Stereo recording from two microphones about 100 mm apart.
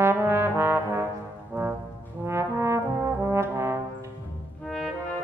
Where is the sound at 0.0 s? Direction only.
25° right (ahead or behind).